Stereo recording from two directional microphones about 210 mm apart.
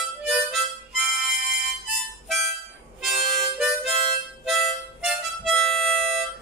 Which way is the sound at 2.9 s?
Centre (ahead or behind).